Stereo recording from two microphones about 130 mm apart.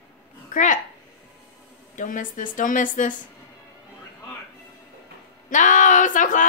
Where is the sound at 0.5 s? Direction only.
80° left.